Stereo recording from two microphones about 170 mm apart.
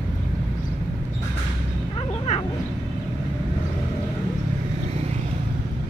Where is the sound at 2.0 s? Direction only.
35° left (ahead or behind).